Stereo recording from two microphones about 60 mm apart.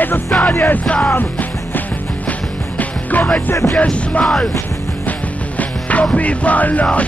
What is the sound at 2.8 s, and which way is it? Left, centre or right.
Music, left.